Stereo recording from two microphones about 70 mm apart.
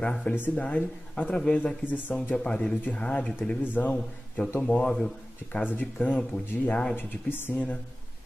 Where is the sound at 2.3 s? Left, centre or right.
Centre.